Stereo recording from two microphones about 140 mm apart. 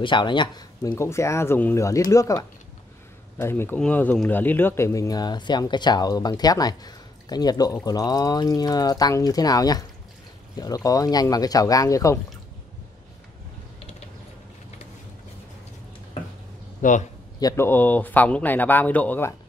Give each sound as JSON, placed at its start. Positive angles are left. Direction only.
{"t": 0.0, "sound": "speech", "side_deg": 35}
{"t": 0.9, "sound": "speech", "side_deg": 20}
{"t": 16.8, "sound": "a man's voice", "side_deg": 70}
{"t": 17.4, "sound": "speech", "side_deg": 25}
{"t": 17.6, "sound": "speech", "side_deg": 15}